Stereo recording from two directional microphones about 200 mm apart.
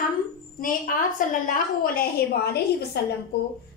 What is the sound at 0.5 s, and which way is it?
A woman's voice, 45° left (ahead or behind).